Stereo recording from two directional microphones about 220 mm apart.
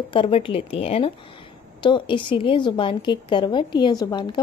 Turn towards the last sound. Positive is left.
turn(degrees=20)  # may be behind; listen again after turning